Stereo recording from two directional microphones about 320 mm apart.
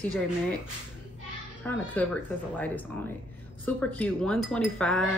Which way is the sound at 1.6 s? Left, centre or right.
Centre.